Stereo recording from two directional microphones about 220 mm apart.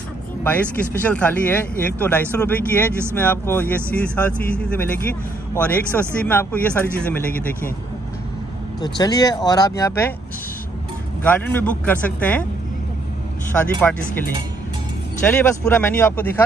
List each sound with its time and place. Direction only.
1.0 s a man's voice: 5° left (ahead or behind)
8.8 s speech: 20° left (ahead or behind)
11.2 s speech: 10° left (ahead or behind)
13.5 s speech: 5° left (ahead or behind)
15.2 s speech: 10° left (ahead or behind)